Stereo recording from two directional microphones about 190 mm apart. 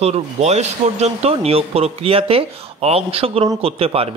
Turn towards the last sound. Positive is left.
turn(degrees=-30)  # may be behind; listen again after turning